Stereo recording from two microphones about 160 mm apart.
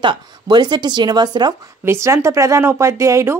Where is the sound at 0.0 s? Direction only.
30° right (ahead or behind).